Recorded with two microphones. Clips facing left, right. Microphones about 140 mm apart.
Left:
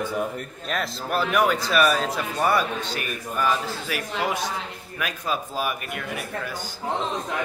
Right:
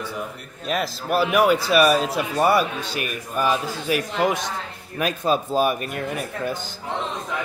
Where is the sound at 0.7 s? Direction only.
10° right (ahead or behind); by 6.1 s 35° right (ahead or behind).